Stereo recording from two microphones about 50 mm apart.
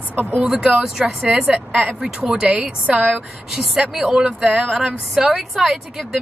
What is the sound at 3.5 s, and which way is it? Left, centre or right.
A woman's voice, centre.